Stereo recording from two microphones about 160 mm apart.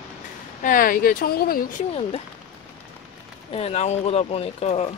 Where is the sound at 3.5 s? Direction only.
40° left (ahead or behind).